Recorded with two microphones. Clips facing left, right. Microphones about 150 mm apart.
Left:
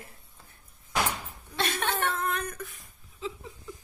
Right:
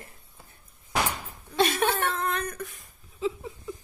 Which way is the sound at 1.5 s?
10° right (ahead or behind).